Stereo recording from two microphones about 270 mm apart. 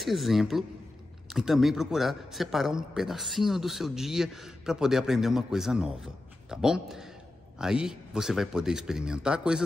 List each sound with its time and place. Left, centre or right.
0.0 s a man's voice: centre